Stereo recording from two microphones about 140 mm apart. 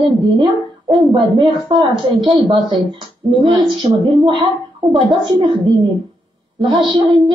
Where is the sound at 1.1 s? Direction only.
35° right (ahead or behind).